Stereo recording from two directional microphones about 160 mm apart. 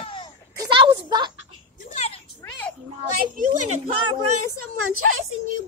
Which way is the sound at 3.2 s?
55° right (ahead or behind).